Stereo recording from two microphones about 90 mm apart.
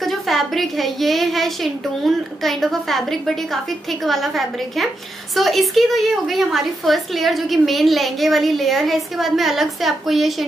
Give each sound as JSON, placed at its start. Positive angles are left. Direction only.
{"t": 0.0, "sound": "a woman's voice", "side_deg": 0}